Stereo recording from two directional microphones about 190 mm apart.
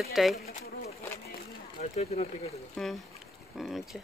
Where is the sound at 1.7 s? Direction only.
35° left (ahead or behind).